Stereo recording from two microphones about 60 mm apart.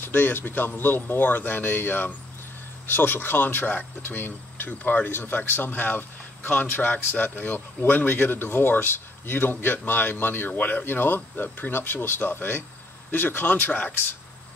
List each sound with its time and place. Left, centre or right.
0.0 s speech: left